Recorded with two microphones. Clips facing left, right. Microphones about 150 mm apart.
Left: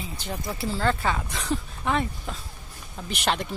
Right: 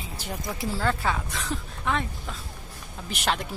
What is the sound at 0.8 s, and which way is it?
Speech, centre (ahead or behind).